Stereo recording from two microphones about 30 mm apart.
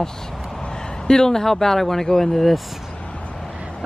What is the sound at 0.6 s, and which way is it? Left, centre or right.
A man's voice, left.